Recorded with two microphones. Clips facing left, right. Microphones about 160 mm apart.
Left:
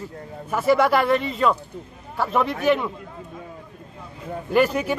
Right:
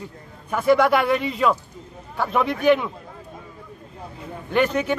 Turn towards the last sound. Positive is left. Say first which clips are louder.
# left 1 dB
turn(degrees=5)  # may be behind; listen again after turning